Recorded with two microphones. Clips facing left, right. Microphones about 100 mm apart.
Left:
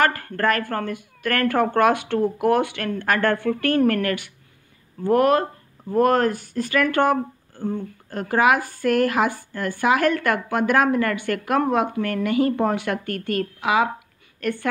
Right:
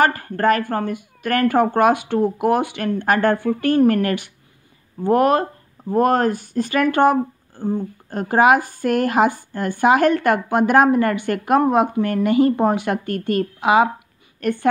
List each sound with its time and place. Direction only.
0.0 s speech: 20° right (ahead or behind)